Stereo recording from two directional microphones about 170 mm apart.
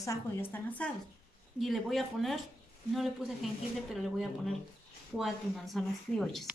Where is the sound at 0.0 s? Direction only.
15° left (ahead or behind).